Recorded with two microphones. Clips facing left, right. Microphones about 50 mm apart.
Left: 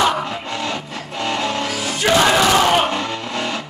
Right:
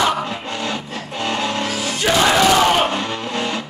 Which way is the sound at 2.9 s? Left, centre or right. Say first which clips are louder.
Even; right.